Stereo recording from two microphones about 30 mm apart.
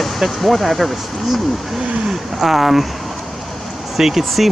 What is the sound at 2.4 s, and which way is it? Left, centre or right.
Speech, centre.